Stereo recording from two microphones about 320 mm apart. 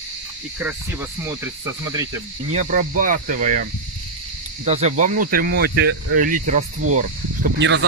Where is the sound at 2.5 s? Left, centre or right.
Right.